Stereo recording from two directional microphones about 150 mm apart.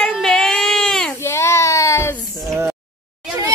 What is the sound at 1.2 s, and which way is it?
Speech, 20° left (ahead or behind).